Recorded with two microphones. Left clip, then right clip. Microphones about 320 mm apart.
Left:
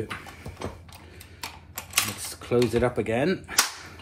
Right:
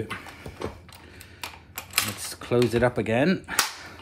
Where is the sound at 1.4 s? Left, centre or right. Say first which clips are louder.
Even; centre.